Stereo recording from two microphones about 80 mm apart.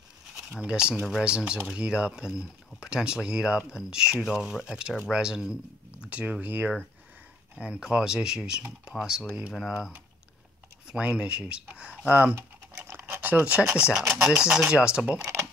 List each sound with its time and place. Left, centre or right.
0.4 s speech: centre
9.5 s speech: centre
10.9 s speech: centre
12.4 s typing: right
13.3 s speech: centre